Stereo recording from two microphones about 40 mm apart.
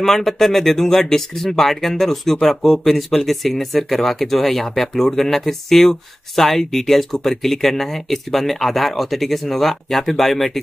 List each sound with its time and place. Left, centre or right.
0.0 s speech: centre